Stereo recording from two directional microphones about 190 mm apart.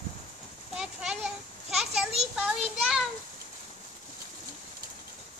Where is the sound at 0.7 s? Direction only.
5° right (ahead or behind).